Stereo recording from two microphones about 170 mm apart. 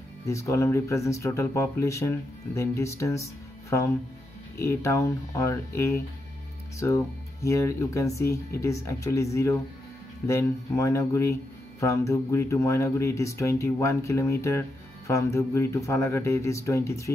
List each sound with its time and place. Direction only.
0.3 s speech: 15° left (ahead or behind)
4.6 s speech: 15° left (ahead or behind)